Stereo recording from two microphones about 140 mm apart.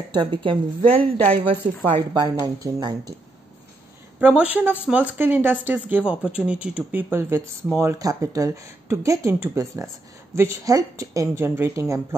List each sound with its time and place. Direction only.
0.1 s a woman's voice: 35° right (ahead or behind)
1.9 s a woman's voice: 30° right (ahead or behind)
4.2 s speech: 10° right (ahead or behind)